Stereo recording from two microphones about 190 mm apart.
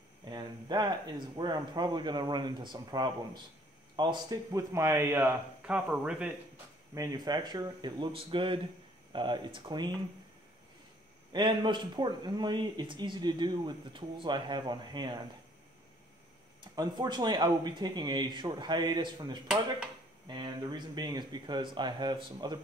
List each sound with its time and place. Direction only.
0.3 s speech: 20° right (ahead or behind)
6.9 s speech: 20° right (ahead or behind)
11.3 s speech: 25° right (ahead or behind)
16.7 s speech: 20° right (ahead or behind)